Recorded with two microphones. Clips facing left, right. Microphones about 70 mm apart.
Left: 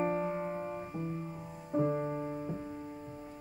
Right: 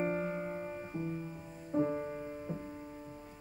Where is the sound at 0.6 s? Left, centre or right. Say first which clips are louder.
Left 2 dB; left.